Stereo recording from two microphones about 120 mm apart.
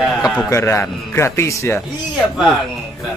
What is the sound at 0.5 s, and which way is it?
Speech, 20° left (ahead or behind).